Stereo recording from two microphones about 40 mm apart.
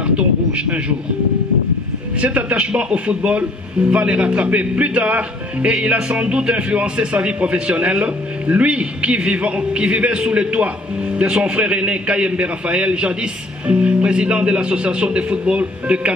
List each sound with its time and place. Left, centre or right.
0.0 s a man's voice: right
2.2 s a man's voice: right